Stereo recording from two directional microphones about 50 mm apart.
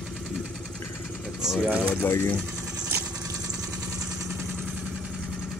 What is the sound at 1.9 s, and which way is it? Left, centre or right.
Speech, left.